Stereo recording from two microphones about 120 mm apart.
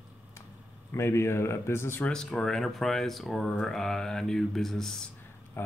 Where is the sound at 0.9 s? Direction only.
20° left (ahead or behind).